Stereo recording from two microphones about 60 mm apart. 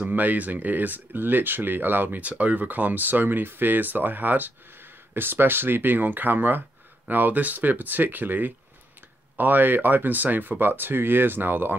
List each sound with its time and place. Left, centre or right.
0.0 s speech: right